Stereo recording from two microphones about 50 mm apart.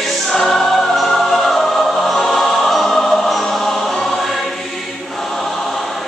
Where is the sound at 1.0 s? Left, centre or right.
Centre.